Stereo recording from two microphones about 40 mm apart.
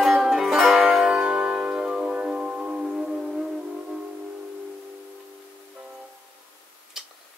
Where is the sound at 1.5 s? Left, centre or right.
Centre.